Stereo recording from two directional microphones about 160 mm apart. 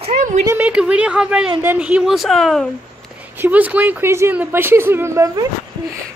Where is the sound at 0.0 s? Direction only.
50° right (ahead or behind).